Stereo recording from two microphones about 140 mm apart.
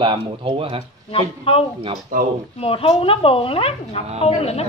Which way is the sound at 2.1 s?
70° right (ahead or behind).